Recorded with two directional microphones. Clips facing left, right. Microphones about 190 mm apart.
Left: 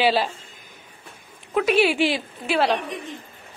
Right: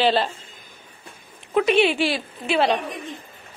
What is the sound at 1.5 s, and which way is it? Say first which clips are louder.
Speech: right 1 dB; 5° left (ahead or behind).